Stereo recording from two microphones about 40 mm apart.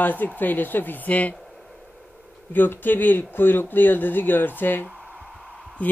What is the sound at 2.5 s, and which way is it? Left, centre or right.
Speech, left.